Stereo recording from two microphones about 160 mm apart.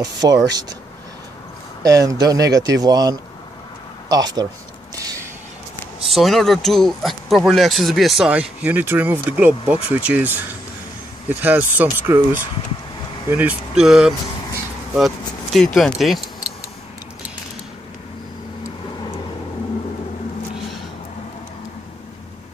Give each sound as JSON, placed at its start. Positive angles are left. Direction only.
{"t": 0.0, "sound": "speech", "side_deg": -25}
{"t": 1.8, "sound": "speech", "side_deg": -20}
{"t": 4.9, "sound": "a sound", "side_deg": -20}
{"t": 6.0, "sound": "speech", "side_deg": 0}